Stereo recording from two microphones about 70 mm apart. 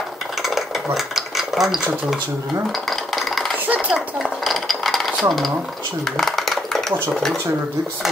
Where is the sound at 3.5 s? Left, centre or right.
Right.